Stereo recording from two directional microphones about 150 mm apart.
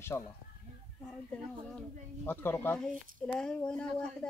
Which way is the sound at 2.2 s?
15° left (ahead or behind).